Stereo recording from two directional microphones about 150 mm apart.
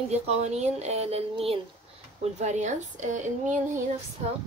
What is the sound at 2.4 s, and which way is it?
Speech, 50° right (ahead or behind).